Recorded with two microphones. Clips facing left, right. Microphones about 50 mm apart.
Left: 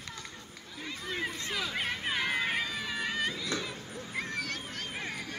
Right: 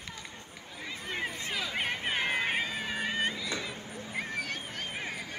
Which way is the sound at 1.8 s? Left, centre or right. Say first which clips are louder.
Right 2 dB; right.